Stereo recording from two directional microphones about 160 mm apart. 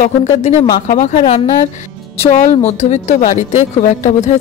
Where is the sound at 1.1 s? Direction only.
40° left (ahead or behind).